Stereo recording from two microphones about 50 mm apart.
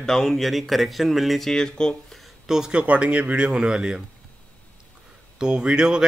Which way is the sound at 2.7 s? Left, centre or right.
Right.